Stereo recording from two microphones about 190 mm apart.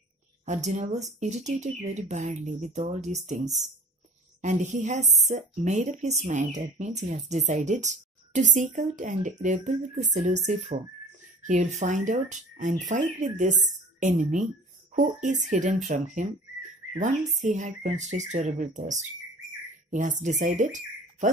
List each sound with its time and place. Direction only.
0.5 s a woman's voice: 40° right (ahead or behind)
4.4 s a woman's voice: 40° right (ahead or behind)